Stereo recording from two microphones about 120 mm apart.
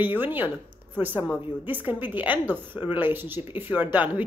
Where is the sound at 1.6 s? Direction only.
15° right (ahead or behind).